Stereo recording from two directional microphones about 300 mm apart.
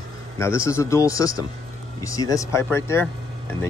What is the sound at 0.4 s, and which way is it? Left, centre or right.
Speech, centre.